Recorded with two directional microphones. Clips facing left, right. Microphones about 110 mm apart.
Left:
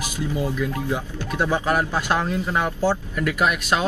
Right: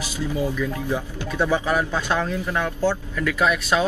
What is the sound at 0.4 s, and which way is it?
Speech, 15° left (ahead or behind).